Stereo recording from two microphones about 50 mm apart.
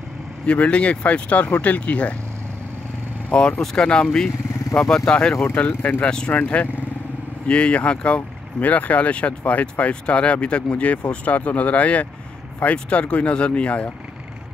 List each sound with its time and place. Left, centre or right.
0.5 s speech: left
3.3 s speech: left
5.7 s speech: left
6.0 s speech: centre
6.3 s speech: left
7.4 s speech: left